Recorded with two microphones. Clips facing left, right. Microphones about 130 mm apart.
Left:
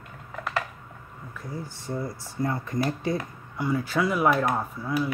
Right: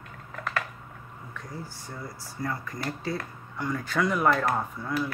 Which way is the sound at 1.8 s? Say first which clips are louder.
Left 8 dB; 25° left (ahead or behind).